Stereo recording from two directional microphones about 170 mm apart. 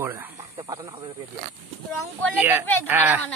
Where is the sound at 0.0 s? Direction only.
10° right (ahead or behind).